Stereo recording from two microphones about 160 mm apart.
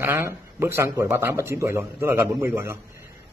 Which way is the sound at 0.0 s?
15° right (ahead or behind).